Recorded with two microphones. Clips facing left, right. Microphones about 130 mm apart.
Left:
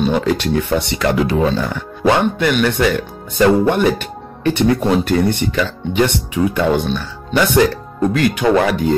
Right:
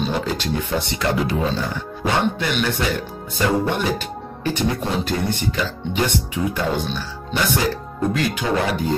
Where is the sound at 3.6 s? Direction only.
60° left (ahead or behind).